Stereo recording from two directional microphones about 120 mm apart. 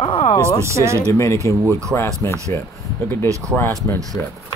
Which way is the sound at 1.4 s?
25° left (ahead or behind).